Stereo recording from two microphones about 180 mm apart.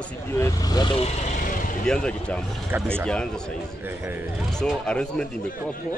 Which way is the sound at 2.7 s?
10° right (ahead or behind).